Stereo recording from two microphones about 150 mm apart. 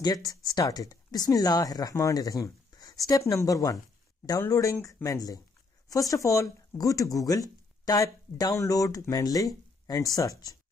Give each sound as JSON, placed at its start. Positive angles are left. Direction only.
{"t": 0.0, "sound": "speech", "side_deg": 25}